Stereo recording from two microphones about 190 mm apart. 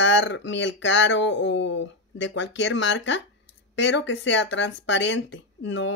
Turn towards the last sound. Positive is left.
turn(degrees=75)  # may be behind; listen again after turning